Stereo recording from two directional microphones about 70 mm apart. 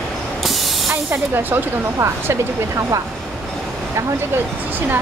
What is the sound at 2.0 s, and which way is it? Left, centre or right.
Speech, right.